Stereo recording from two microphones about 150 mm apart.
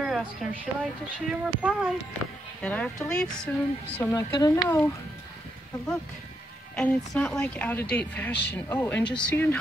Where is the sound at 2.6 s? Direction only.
10° left (ahead or behind).